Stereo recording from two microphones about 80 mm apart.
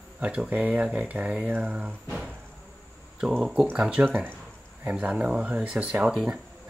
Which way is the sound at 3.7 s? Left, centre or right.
Centre.